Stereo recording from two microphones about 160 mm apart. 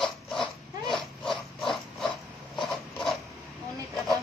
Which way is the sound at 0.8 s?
Centre (ahead or behind).